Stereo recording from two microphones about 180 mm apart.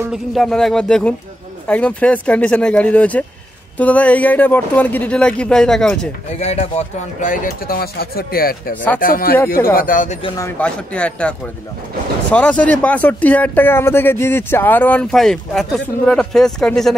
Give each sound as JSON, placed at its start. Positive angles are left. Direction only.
{"t": 0.1, "sound": "speech", "side_deg": 0}
{"t": 6.4, "sound": "speech", "side_deg": 35}
{"t": 10.2, "sound": "a man's voice", "side_deg": 20}
{"t": 10.6, "sound": "speech", "side_deg": 5}